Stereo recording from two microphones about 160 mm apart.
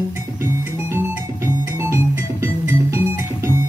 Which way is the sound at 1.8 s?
15° right (ahead or behind).